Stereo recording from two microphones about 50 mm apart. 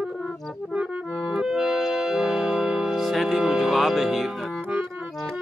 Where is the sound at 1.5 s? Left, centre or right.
Centre.